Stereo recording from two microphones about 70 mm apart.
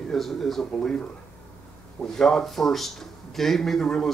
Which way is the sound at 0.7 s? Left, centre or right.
Centre.